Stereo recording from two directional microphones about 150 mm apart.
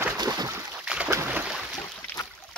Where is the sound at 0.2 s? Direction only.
25° right (ahead or behind).